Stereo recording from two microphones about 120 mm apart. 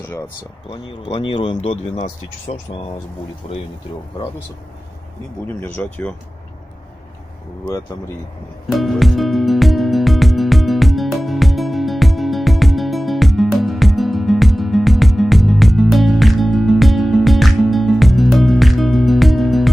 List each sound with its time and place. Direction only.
0.7 s speech: 50° left (ahead or behind); by 3.6 s 65° left (ahead or behind)
5.6 s speech: 15° left (ahead or behind)
7.6 s speech: 30° left (ahead or behind)
8.6 s music: centre (ahead or behind)